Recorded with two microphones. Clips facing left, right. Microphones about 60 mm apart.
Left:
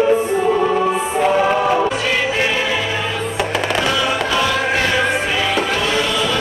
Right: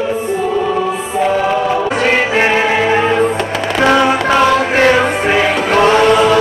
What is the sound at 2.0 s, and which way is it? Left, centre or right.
Music, right.